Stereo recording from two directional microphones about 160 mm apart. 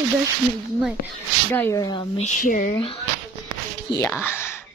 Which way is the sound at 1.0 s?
70° left (ahead or behind).